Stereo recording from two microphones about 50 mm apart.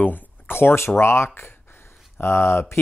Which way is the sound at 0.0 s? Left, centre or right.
Left.